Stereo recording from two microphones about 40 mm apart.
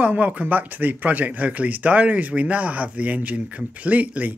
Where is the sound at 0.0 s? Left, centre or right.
Right.